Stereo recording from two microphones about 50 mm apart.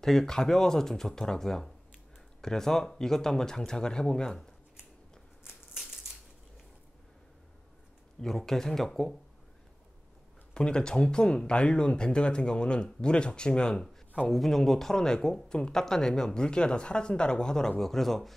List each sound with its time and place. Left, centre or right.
0.0 s speech: centre
5.4 s a sound: centre
8.2 s speech: centre
10.5 s speech: centre
14.3 s speech: centre